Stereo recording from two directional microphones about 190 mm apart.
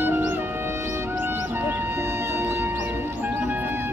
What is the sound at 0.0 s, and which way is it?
Music, 10° right (ahead or behind).